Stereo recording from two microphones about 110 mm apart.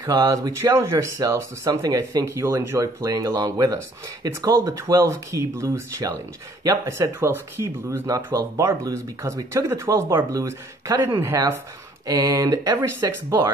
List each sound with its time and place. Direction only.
0.0 s speech: 40° right (ahead or behind)